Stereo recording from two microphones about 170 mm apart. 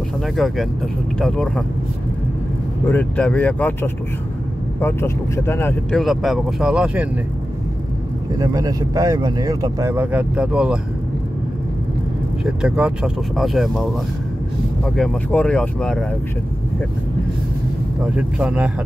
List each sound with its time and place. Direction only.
0.2 s speech: centre (ahead or behind)
2.9 s speech: 10° left (ahead or behind)
5.9 s speech: centre (ahead or behind)
8.4 s speech: 20° right (ahead or behind); by 10.8 s 5° right (ahead or behind)
12.4 s speech: 5° right (ahead or behind)
15.0 s speech: 5° left (ahead or behind)
18.0 s speech: 5° right (ahead or behind)